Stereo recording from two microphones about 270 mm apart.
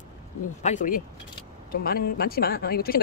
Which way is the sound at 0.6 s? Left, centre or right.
Left.